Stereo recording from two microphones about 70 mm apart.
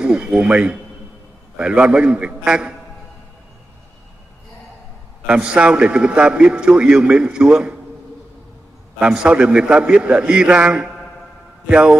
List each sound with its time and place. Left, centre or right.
0.0 s a man's voice: centre
5.2 s a man's voice: centre
9.0 s a man's voice: centre